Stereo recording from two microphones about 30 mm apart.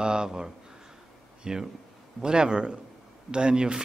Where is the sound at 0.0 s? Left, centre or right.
Right.